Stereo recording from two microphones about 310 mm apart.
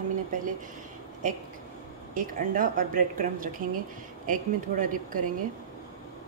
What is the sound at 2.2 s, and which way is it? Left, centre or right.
A woman's voice, right.